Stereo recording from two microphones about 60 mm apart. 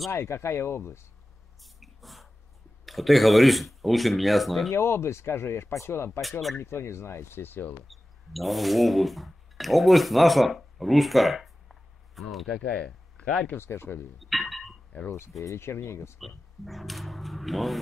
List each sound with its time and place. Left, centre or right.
0.1 s speech: left
1.6 s spray: centre
2.8 s speech: centre
4.7 s speech: left
7.9 s speech: centre
12.8 s speech: centre
13.6 s speech: left
14.3 s a sound: centre
15.0 s speech: left
16.2 s speech: centre